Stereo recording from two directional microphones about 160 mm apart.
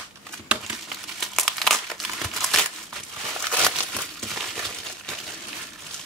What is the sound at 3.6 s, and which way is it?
Crumpling, 5° left (ahead or behind).